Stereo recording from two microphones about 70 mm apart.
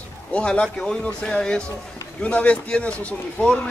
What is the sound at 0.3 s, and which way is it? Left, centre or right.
Speech, centre.